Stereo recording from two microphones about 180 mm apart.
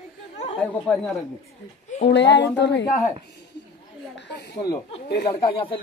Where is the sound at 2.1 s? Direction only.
80° left.